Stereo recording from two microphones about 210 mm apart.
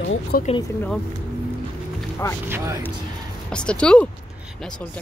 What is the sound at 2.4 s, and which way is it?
Speech, 10° right (ahead or behind).